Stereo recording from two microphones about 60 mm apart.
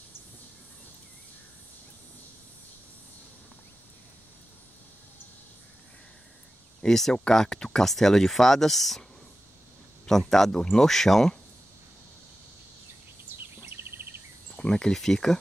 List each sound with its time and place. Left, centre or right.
6.8 s speech: centre
10.0 s speech: centre
13.4 s insect: right
14.5 s speech: centre